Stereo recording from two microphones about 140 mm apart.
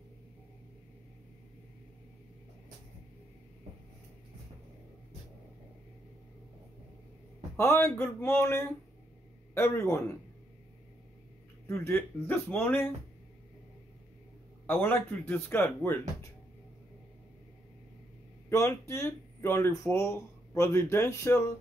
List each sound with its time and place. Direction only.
7.5 s speech: 15° left (ahead or behind)
11.6 s speech: 20° left (ahead or behind)
14.7 s speech: 15° left (ahead or behind)
18.5 s speech: 20° left (ahead or behind)